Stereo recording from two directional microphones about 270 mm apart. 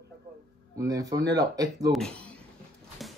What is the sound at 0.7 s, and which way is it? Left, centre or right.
Speech, centre.